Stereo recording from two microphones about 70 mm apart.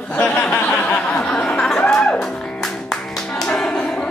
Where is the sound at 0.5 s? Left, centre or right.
Left.